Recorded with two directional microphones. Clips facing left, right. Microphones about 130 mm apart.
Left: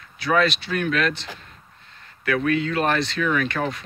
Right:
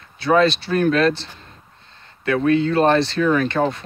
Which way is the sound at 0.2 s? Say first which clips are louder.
Right 5 dB; 30° right (ahead or behind).